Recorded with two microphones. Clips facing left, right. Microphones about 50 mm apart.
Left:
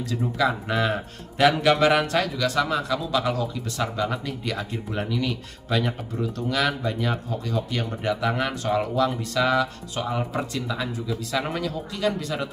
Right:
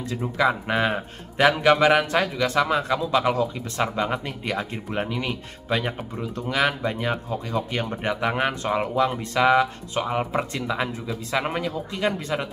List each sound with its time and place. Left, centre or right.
0.0 s speech: right